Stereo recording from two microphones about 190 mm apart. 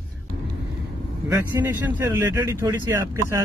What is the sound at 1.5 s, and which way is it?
Speech, 10° right (ahead or behind).